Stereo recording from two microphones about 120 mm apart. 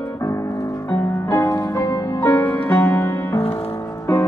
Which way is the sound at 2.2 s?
15° left (ahead or behind).